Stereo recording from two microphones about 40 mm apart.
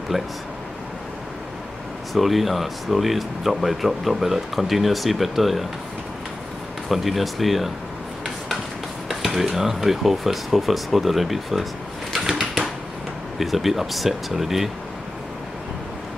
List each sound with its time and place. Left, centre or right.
0.1 s speech: centre
2.1 s speech: centre
6.9 s speech: centre
9.2 s dishes: centre
9.5 s speech: centre
12.1 s a sound: centre
13.4 s speech: centre